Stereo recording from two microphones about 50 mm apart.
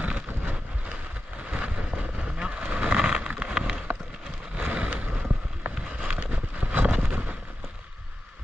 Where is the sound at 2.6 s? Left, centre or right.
Right.